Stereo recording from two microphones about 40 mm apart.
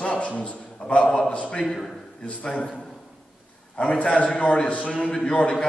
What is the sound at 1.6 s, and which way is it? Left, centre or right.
Speech, centre.